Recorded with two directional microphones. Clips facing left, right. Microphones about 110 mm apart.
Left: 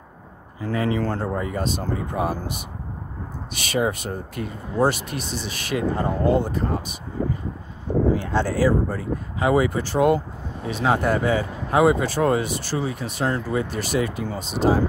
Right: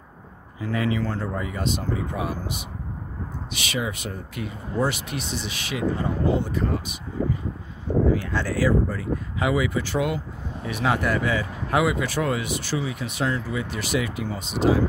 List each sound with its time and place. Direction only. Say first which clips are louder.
0.7 s speech: left 2 dB; 40° left (ahead or behind)
8.1 s speech: left 2 dB; 25° left (ahead or behind)
10.7 s speech: left 3 dB; 30° left (ahead or behind)